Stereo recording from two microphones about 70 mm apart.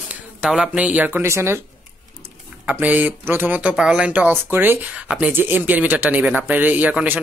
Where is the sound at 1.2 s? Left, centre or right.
Right.